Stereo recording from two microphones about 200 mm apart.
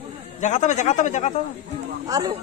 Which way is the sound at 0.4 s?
35° left (ahead or behind).